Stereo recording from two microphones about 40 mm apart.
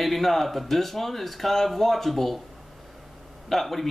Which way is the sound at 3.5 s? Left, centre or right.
Centre.